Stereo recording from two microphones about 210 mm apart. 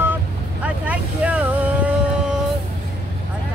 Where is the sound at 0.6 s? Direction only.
5° right (ahead or behind).